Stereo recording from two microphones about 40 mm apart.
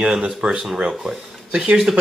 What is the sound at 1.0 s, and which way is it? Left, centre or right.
Speech, centre.